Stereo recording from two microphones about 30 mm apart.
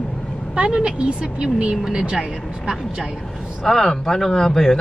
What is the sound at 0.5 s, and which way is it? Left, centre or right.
Speech, right.